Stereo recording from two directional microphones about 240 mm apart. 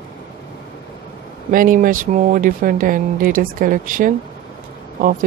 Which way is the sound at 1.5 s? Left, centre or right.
Right.